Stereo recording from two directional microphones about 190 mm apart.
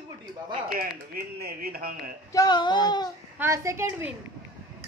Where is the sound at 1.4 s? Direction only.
55° right (ahead or behind).